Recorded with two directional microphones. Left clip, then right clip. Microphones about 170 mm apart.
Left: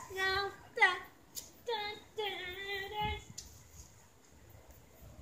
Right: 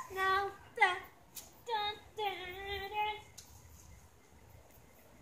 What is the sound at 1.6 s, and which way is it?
Female singing, 20° right (ahead or behind).